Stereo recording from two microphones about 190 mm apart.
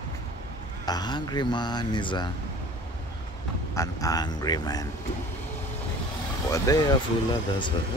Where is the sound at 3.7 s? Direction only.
15° left (ahead or behind).